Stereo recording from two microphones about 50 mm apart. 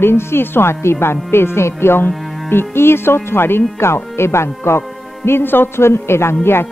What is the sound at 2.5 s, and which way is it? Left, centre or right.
A man's voice, left.